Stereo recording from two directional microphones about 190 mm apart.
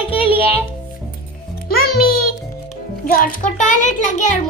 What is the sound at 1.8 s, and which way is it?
Music, 55° left (ahead or behind).